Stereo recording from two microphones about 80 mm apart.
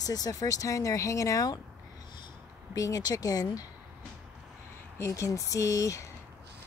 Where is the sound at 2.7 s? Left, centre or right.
Left.